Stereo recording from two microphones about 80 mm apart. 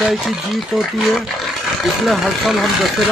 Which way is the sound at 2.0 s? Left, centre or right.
Centre.